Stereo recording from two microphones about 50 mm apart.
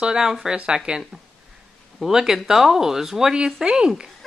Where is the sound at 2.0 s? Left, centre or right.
Centre.